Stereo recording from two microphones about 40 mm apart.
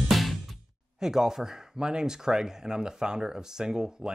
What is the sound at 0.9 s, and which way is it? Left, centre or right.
Speech, centre.